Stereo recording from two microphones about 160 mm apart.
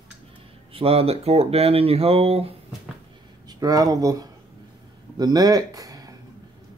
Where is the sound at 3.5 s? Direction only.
25° right (ahead or behind).